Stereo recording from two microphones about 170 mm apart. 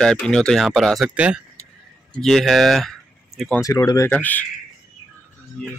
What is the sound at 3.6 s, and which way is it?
Speech, 20° left (ahead or behind).